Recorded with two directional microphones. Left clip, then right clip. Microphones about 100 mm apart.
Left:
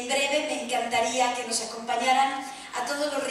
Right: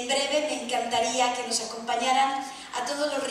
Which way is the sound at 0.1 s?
15° right (ahead or behind).